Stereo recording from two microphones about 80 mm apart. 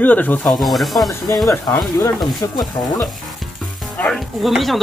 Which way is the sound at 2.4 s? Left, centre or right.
Left.